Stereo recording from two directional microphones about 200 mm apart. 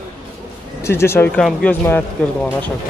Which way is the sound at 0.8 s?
15° left (ahead or behind).